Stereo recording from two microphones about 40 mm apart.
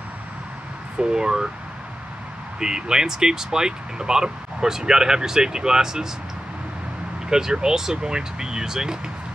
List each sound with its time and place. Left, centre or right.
0.9 s speech: centre
2.6 s speech: centre
7.2 s speech: centre